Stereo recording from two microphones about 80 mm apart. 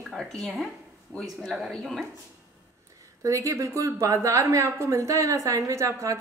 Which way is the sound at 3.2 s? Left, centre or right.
Right.